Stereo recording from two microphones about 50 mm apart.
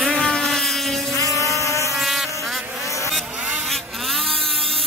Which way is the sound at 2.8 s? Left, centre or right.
Left.